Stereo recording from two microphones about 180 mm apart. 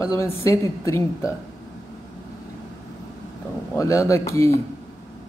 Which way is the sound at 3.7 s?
15° left (ahead or behind).